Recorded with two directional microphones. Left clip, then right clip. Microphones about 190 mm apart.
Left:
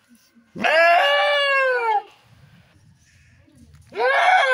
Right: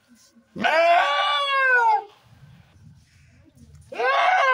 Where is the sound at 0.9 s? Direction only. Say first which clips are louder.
Left 3 dB; 30° left (ahead or behind).